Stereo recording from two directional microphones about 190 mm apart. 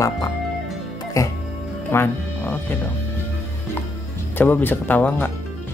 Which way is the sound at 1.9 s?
10° left (ahead or behind).